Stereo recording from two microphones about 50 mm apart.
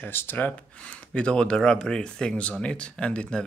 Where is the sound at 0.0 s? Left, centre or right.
Left.